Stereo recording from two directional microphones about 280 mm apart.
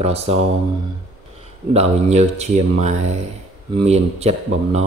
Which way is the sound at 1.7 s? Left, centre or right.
Right.